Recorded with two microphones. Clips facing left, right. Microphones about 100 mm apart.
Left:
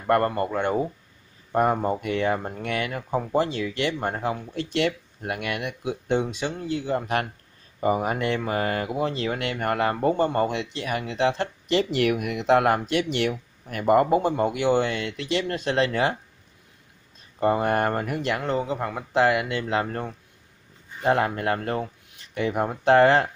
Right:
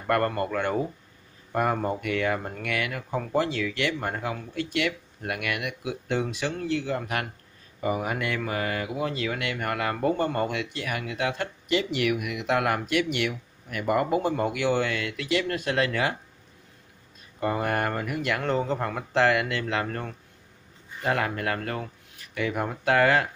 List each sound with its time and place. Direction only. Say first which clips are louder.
0.0 s speech: left 3 dB; 20° left (ahead or behind)
17.4 s speech: left 5 dB; 25° left (ahead or behind)
18.4 s speech: even; 5° left (ahead or behind); by 23.2 s 30° left (ahead or behind)